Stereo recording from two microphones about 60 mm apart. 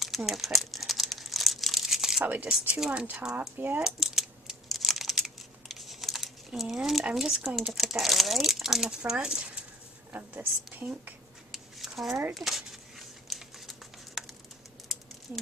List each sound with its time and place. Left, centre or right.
0.0 s crumpling: centre
2.7 s speech: centre
3.3 s speech: right
3.8 s computer keyboard: centre
7.1 s speech: centre
10.1 s a woman's voice: right
11.5 s a sound: centre
12.4 s speech: centre
13.3 s a sound: centre
14.9 s patter: centre